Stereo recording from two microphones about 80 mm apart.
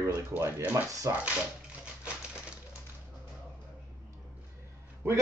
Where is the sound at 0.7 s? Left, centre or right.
Right.